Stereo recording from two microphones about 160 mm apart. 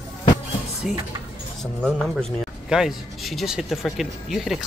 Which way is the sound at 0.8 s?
5° right (ahead or behind).